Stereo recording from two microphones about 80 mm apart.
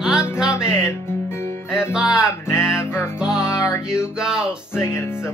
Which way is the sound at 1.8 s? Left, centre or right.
Centre.